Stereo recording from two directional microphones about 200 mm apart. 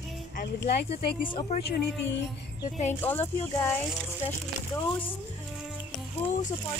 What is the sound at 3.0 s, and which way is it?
Speech, 10° left (ahead or behind).